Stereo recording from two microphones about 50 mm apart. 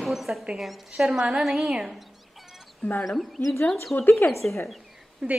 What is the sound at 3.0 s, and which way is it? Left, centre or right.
A woman's voice, centre.